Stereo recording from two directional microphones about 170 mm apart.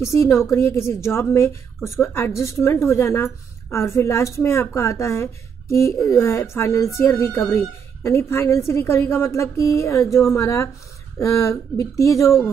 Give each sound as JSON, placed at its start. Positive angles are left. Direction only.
{"t": 0.0, "sound": "a woman's voice", "side_deg": 15}